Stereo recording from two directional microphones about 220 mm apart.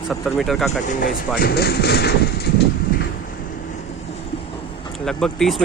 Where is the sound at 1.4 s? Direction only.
45° left (ahead or behind).